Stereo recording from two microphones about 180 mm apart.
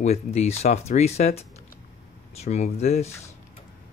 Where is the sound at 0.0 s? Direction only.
40° left (ahead or behind).